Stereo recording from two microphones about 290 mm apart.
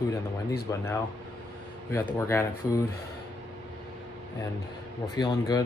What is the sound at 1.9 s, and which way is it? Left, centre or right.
Speech, centre.